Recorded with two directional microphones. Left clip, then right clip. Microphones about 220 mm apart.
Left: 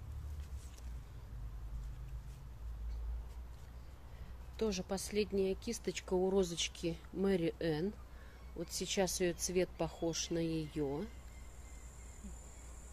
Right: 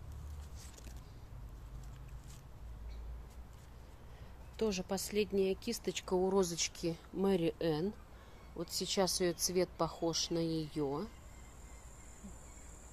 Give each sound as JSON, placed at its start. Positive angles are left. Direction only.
{"t": 4.6, "sound": "speech", "side_deg": -10}